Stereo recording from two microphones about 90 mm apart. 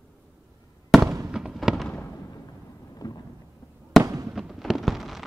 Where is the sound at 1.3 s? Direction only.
5° right (ahead or behind).